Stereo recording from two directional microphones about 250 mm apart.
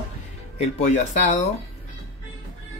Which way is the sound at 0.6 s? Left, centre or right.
Left.